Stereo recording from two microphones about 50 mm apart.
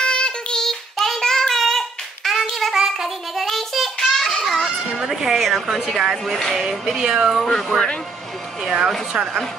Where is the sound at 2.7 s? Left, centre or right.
Centre.